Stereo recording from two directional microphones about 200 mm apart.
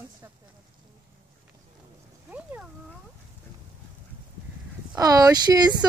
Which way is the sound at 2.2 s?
5° right (ahead or behind).